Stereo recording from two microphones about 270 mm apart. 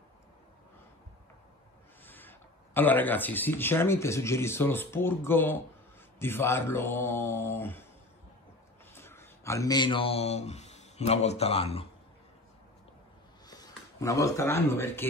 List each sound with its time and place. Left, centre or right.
2.0 s speech: centre
8.9 s speech: centre
13.5 s speech: centre